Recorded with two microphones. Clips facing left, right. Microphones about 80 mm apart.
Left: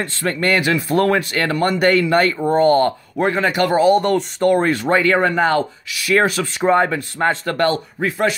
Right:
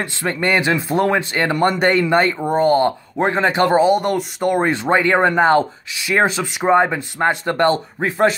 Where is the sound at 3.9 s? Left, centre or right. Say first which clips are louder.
Left 2 dB; centre.